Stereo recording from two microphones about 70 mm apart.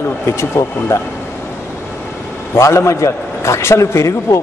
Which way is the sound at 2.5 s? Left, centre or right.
Left.